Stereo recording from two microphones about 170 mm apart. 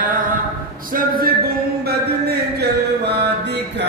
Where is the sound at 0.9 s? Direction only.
60° right (ahead or behind).